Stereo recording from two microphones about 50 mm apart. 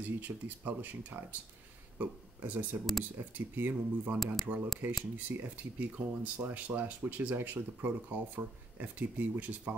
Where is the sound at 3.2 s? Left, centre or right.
Right.